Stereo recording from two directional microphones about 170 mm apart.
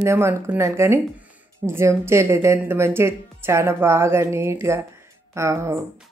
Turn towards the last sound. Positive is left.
turn(degrees=-15)  # may be behind; listen again after turning